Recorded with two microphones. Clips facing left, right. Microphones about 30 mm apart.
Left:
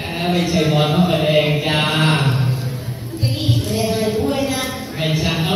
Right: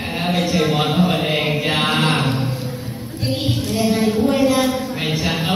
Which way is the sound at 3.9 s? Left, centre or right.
Right.